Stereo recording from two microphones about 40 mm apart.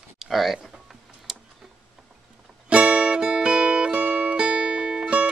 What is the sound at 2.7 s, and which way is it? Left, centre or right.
Music, right.